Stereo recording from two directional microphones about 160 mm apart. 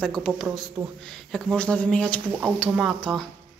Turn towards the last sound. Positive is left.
turn(degrees=-5)  # may be behind; listen again after turning